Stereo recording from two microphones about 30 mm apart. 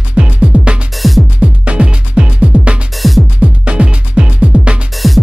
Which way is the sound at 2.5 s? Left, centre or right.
Right.